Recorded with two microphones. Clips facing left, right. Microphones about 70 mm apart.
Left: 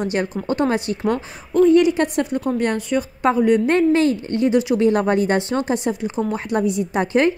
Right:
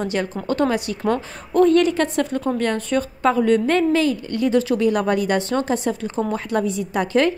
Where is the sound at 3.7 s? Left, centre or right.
Left.